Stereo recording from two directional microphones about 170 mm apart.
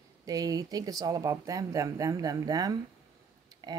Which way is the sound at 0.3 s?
20° right (ahead or behind).